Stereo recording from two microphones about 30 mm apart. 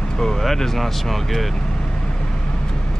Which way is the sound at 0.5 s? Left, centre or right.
Centre.